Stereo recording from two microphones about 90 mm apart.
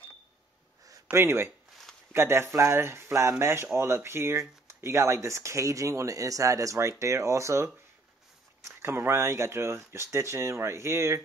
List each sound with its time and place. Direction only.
1.1 s speech: 30° right (ahead or behind)